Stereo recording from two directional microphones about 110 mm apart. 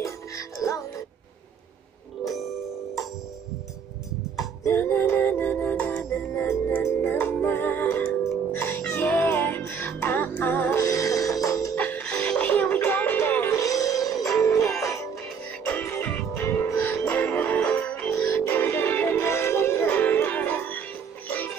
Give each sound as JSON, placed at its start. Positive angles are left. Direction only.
{"t": 0.0, "sound": "music", "side_deg": 30}
{"t": 2.2, "sound": "music", "side_deg": 0}
{"t": 4.6, "sound": "music", "side_deg": 20}
{"t": 10.8, "sound": "music", "side_deg": 30}
{"t": 11.7, "sound": "music", "side_deg": 15}
{"t": 14.6, "sound": "music", "side_deg": 0}
{"t": 15.6, "sound": "music", "side_deg": 20}
{"t": 18.1, "sound": "music", "side_deg": 25}